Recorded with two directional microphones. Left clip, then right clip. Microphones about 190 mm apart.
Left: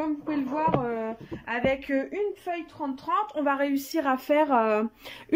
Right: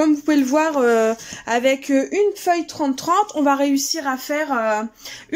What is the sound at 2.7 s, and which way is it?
Speech, 40° right (ahead or behind).